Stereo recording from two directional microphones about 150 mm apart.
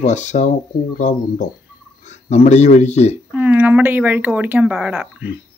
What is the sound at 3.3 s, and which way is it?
Speech, 10° right (ahead or behind).